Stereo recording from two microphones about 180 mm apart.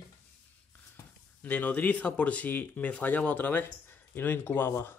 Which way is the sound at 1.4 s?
10° left (ahead or behind).